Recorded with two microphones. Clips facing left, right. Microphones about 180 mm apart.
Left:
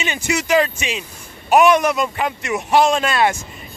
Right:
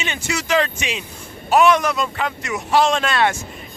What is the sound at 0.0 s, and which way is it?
Speech, 10° left (ahead or behind).